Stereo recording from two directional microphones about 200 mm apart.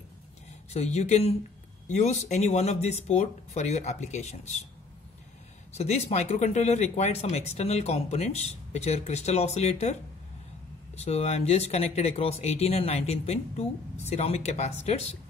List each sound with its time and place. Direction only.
0.7 s speech: 35° left (ahead or behind)
5.8 s speech: 30° left (ahead or behind)
11.0 s speech: 30° left (ahead or behind)